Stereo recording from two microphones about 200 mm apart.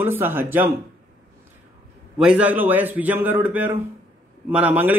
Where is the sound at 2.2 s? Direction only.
5° right (ahead or behind).